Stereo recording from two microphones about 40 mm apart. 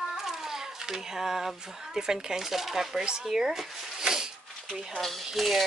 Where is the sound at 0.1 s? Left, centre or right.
Centre.